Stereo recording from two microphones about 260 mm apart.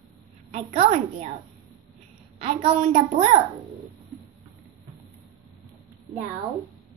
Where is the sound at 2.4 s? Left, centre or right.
Right.